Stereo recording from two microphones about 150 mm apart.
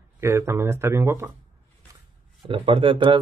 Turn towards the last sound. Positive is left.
turn(degrees=-35)  # may be behind; listen again after turning